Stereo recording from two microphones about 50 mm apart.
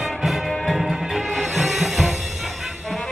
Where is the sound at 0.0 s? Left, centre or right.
Centre.